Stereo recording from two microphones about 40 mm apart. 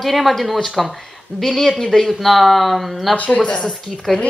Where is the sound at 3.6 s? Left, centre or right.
Centre.